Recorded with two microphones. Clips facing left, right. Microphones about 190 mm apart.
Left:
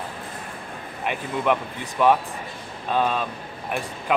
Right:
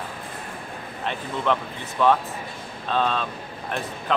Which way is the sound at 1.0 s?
10° left (ahead or behind).